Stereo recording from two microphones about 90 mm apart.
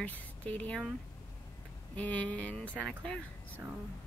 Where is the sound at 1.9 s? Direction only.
15° left (ahead or behind).